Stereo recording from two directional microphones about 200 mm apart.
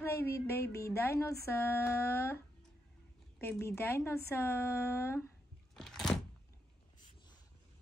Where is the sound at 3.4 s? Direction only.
10° left (ahead or behind).